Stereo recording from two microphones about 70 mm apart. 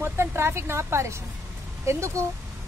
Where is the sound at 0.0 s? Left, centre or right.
Right.